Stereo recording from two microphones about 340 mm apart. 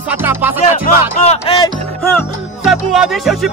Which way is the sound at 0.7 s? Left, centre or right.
Centre.